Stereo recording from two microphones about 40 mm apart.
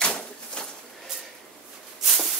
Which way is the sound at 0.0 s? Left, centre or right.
Centre.